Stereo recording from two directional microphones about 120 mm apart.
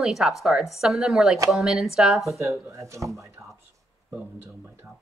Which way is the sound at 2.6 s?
25° right (ahead or behind).